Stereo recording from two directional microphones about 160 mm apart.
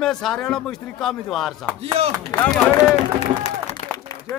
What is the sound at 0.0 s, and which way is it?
Speech, 5° left (ahead or behind).